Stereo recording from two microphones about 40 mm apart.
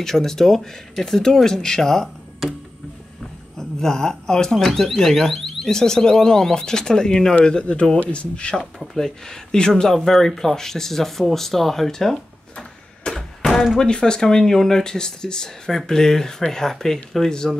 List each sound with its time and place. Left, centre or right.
0.0 s speech: centre
2.4 s a sound: centre
3.5 s speech: centre
7.7 s speech: left
8.9 s speech: centre
13.0 s a sound: centre
13.7 s speech: centre